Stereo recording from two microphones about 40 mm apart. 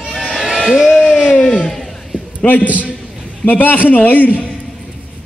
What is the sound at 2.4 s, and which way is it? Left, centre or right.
A man's voice, left.